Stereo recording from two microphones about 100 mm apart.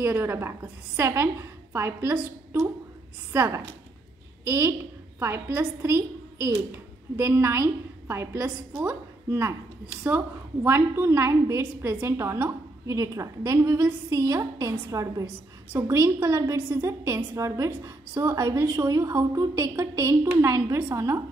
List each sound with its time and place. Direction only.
0.0 s a woman's voice: 25° right (ahead or behind)